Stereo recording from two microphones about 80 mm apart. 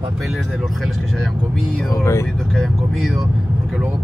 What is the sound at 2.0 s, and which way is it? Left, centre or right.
Speech, left.